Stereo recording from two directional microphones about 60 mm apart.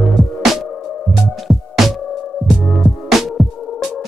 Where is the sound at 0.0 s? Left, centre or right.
Centre.